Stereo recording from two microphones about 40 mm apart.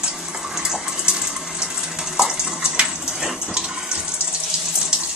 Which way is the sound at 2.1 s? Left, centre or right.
Centre.